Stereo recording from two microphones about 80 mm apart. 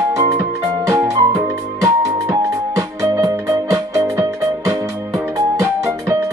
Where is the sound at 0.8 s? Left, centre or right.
Right.